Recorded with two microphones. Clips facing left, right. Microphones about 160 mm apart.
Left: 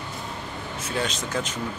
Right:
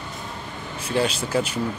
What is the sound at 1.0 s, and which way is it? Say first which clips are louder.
Speech: right 6 dB; 10° right (ahead or behind).